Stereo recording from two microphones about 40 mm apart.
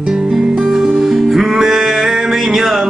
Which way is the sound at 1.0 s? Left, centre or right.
Centre.